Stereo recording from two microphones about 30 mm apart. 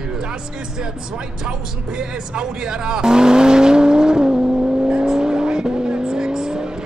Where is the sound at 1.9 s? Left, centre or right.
Right.